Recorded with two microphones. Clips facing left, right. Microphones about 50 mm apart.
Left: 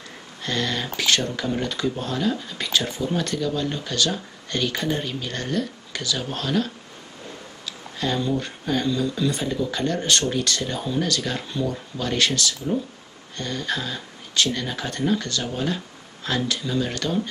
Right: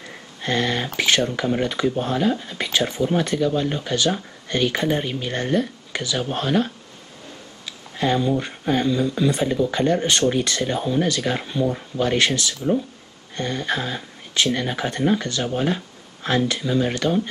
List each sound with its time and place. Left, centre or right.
0.4 s speech: right
8.0 s speech: right